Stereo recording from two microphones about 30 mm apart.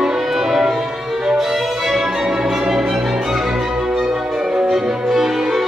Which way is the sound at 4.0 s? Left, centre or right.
Right.